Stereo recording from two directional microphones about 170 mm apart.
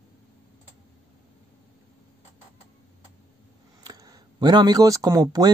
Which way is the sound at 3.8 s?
20° right (ahead or behind).